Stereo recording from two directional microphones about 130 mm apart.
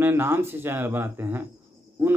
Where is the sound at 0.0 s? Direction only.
15° right (ahead or behind).